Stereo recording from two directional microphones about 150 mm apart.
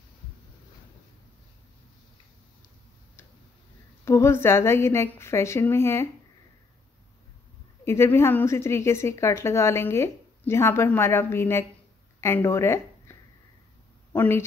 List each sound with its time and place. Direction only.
4.0 s a woman's voice: 15° left (ahead or behind)
7.8 s a woman's voice: 20° left (ahead or behind)